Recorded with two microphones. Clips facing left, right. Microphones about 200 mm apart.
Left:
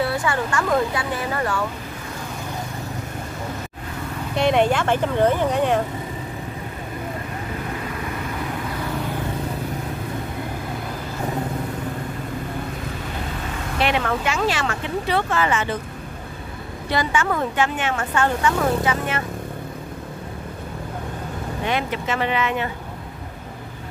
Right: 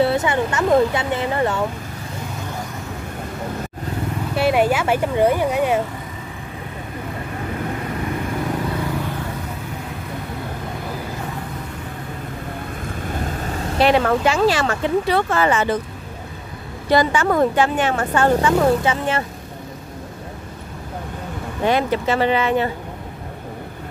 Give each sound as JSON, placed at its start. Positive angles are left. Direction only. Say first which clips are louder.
{"t": 0.0, "sound": "speech", "louder": "right 5 dB", "side_deg": -25}
{"t": 4.4, "sound": "speech", "louder": "right 1 dB", "side_deg": -5}
{"t": 13.7, "sound": "a woman's voice", "louder": "right 6 dB", "side_deg": -35}
{"t": 16.9, "sound": "a woman's voice", "louder": "right 6 dB", "side_deg": -40}
{"t": 21.6, "sound": "a woman's voice", "louder": "right 7 dB", "side_deg": -35}